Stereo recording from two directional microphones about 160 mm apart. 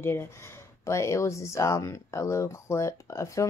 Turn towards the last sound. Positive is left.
turn(degrees=20)  # may be behind; listen again after turning